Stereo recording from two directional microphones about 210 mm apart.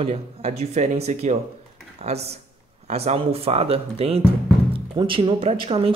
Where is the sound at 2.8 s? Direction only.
30° right (ahead or behind).